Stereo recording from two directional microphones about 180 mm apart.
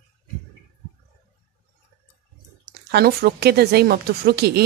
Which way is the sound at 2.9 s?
60° right (ahead or behind).